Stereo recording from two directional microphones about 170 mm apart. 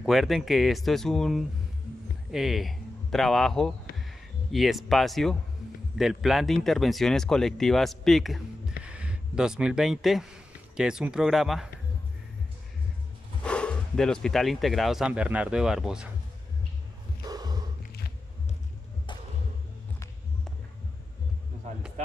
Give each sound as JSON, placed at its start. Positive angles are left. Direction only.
{"t": 0.0, "sound": "speech", "side_deg": 0}
{"t": 13.4, "sound": "speech", "side_deg": 5}
{"t": 17.2, "sound": "snort", "side_deg": -25}
{"t": 21.7, "sound": "music", "side_deg": -45}